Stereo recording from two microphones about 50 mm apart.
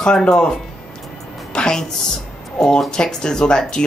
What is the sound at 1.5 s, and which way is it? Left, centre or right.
Music, centre.